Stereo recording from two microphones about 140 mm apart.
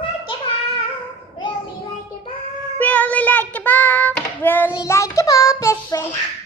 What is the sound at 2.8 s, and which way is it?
Child singing, 10° left (ahead or behind).